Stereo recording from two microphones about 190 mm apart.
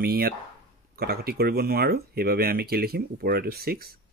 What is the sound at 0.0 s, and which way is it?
Speech, 55° right (ahead or behind).